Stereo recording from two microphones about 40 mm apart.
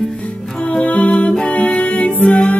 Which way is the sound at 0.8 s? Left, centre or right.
Left.